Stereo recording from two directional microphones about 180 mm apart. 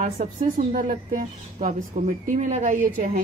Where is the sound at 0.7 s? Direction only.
45° right (ahead or behind).